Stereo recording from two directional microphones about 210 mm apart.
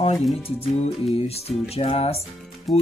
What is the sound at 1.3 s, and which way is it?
Speech, 30° left (ahead or behind).